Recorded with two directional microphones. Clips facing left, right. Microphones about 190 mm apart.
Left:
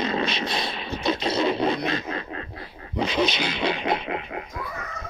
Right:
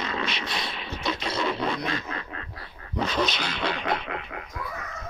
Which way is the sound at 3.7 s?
20° left (ahead or behind).